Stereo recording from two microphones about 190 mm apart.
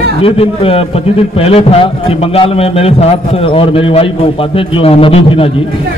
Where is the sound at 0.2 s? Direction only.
30° left (ahead or behind).